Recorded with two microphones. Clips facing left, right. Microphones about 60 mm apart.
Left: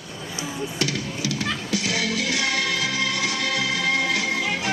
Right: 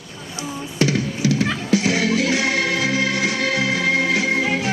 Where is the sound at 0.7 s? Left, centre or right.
Right.